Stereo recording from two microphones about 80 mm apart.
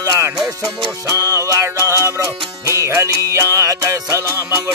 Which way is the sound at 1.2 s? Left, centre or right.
Right.